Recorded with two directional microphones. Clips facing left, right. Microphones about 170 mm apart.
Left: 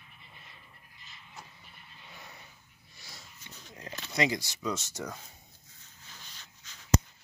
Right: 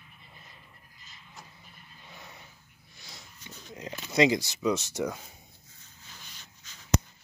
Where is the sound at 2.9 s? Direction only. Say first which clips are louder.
Right 1 dB; 20° right (ahead or behind).